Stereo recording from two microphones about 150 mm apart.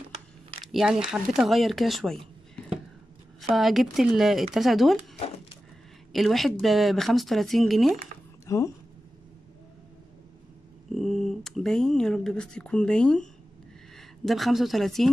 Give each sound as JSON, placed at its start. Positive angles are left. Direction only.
{"t": 0.7, "sound": "speech", "side_deg": -5}
{"t": 6.1, "sound": "speech", "side_deg": 0}
{"t": 8.5, "sound": "speech", "side_deg": 20}
{"t": 11.0, "sound": "speech", "side_deg": 0}